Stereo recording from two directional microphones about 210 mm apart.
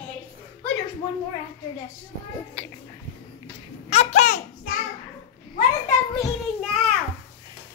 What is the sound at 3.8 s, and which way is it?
Laughter, 30° left (ahead or behind).